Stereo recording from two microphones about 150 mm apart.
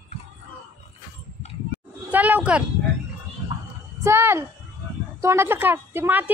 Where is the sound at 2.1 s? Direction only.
10° right (ahead or behind).